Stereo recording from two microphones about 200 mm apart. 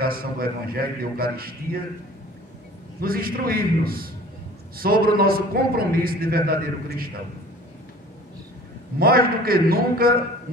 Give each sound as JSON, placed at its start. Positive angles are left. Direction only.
{"t": 0.0, "sound": "a man's voice", "side_deg": -45}
{"t": 3.0, "sound": "a man's voice", "side_deg": -45}
{"t": 9.0, "sound": "a man's voice", "side_deg": -50}